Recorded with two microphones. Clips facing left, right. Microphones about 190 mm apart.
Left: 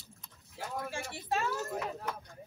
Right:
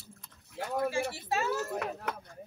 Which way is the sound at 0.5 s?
60° right (ahead or behind).